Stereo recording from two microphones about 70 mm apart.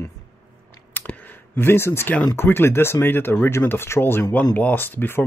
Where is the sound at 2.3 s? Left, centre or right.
Left.